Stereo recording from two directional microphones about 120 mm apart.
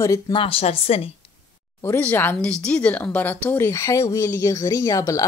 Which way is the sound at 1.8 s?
15° left (ahead or behind).